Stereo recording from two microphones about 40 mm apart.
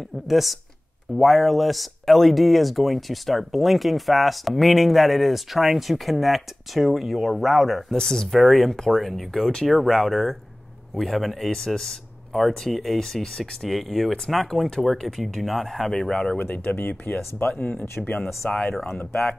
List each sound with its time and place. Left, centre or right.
0.3 s speech: centre
7.9 s speech: centre
15.9 s speech: centre
16.3 s speech: left
18.5 s speech: centre